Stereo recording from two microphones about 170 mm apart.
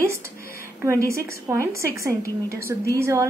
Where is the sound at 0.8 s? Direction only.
15° right (ahead or behind).